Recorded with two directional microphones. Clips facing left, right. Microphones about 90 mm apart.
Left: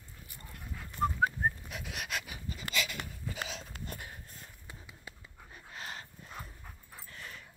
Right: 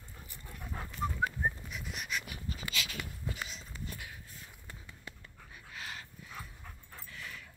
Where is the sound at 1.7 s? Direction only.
70° left (ahead or behind).